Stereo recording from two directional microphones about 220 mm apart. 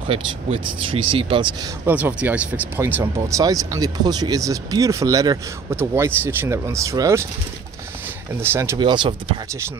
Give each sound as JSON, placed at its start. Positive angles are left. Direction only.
{"t": 0.1, "sound": "speech", "side_deg": -25}
{"t": 1.9, "sound": "speech", "side_deg": -5}
{"t": 8.4, "sound": "speech", "side_deg": -10}